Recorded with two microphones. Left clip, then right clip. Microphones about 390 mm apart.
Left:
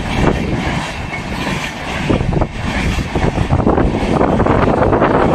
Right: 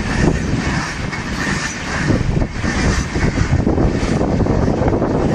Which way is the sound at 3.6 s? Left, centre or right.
Left.